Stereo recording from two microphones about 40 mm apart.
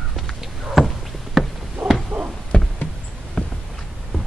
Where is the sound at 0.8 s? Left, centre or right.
Centre.